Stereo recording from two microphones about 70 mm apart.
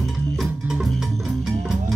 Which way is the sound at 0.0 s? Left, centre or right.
Centre.